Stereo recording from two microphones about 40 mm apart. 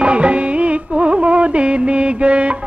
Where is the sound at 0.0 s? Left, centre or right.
Right.